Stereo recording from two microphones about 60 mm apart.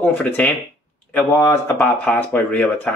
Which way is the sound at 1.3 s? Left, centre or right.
Left.